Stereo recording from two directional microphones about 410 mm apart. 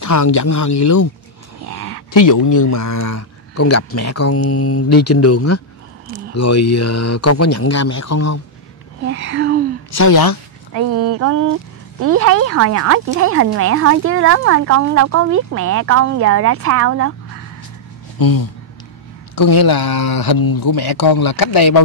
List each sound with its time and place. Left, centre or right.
0.0 s a woman's voice: left
2.1 s speech: left
6.0 s a sound: right
6.3 s speech: left
9.0 s speech: right
9.9 s a woman's voice: left
12.0 s speech: right
18.2 s a woman's voice: left